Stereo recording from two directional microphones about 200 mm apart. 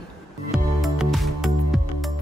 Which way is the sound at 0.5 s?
Centre (ahead or behind).